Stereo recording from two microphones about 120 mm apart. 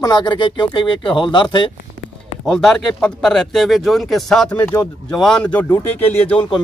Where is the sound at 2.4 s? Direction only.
Centre (ahead or behind).